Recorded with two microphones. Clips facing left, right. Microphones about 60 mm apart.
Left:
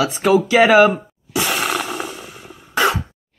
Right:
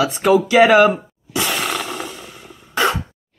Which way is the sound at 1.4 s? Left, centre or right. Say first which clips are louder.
Left 1 dB; centre.